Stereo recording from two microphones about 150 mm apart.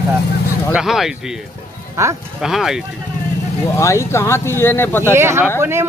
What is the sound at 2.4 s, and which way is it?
Speech, centre (ahead or behind).